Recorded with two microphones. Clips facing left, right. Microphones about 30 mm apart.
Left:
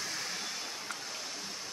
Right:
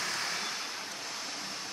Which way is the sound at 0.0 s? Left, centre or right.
Right.